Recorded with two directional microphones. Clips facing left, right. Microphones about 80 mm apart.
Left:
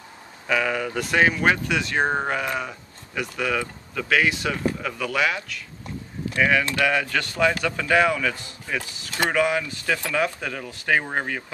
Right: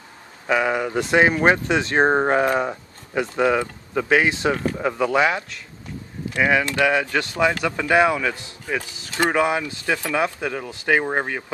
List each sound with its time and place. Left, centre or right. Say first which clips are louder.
0.5 s speech: right 3 dB; right